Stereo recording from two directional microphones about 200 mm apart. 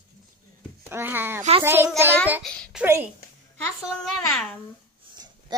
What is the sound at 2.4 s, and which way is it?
Speech, 5° left (ahead or behind).